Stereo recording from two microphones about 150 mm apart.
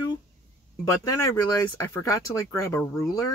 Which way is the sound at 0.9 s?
25° left (ahead or behind).